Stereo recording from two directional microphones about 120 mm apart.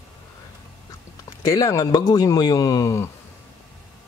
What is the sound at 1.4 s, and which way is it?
A man's voice, 30° left (ahead or behind).